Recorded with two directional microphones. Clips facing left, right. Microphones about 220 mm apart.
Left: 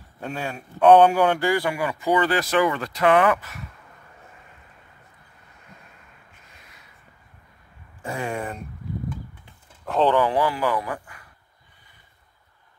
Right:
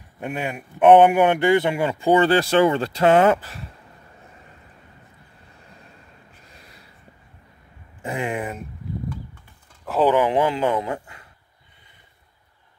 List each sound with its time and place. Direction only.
0.2 s speech: 15° right (ahead or behind)
6.4 s a sound: 35° right (ahead or behind)
8.0 s speech: 20° right (ahead or behind)
9.8 s speech: 5° right (ahead or behind)
10.1 s speech: 20° right (ahead or behind)